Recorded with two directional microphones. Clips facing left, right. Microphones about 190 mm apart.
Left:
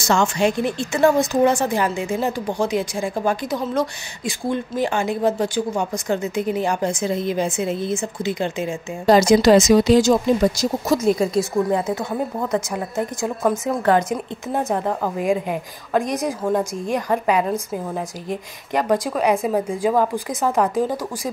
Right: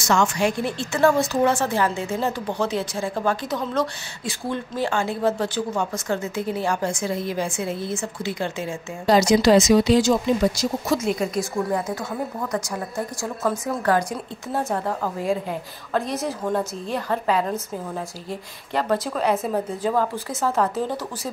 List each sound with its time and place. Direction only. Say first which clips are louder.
0.0 s a woman's voice: left 2 dB; 30° left (ahead or behind)
9.0 s speech: left 3 dB; 50° left (ahead or behind)
11.3 s a woman's voice: left 5 dB; 25° left (ahead or behind)